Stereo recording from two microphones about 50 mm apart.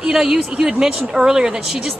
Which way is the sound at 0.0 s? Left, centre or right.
Centre.